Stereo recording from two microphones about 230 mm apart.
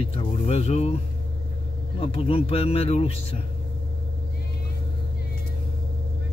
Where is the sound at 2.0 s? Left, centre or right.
Left.